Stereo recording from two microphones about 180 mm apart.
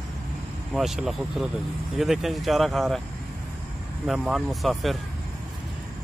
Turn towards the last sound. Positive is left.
turn(degrees=0)  # may be behind; listen again after turning